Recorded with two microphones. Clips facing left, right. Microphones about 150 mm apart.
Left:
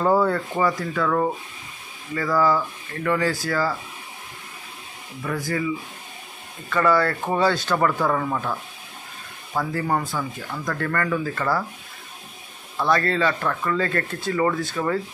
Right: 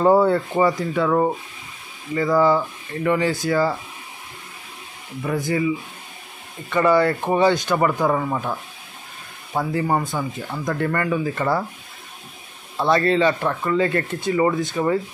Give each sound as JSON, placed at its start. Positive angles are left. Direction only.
{"t": 0.0, "sound": "speech", "side_deg": -25}
{"t": 5.2, "sound": "speech", "side_deg": -20}
{"t": 6.7, "sound": "speech", "side_deg": -20}
{"t": 12.7, "sound": "speech", "side_deg": -25}